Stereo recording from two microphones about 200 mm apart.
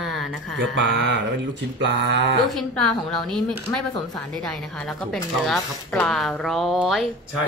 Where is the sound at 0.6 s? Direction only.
65° right (ahead or behind).